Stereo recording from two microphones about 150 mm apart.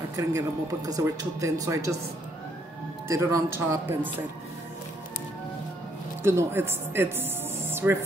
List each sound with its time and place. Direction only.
0.1 s speech: 20° right (ahead or behind)
3.1 s speech: 20° right (ahead or behind)
6.2 s speech: 15° right (ahead or behind)